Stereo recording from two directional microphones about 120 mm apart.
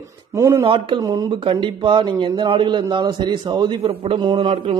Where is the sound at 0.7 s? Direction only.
45° right (ahead or behind).